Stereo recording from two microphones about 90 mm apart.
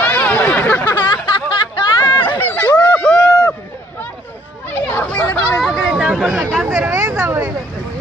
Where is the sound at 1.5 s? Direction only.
60° left (ahead or behind).